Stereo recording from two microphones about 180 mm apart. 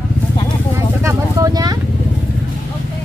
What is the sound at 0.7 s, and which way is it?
Vehicle, 15° right (ahead or behind).